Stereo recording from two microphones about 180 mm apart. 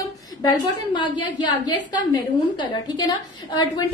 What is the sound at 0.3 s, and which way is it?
A woman's voice, 20° left (ahead or behind).